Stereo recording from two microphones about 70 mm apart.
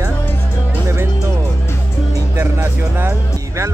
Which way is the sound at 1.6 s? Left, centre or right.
Left.